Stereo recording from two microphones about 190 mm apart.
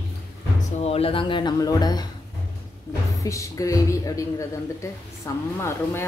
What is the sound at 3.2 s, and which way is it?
Speech, 15° left (ahead or behind).